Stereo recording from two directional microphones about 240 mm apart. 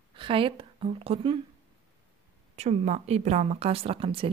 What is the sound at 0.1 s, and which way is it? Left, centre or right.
A woman's voice, right.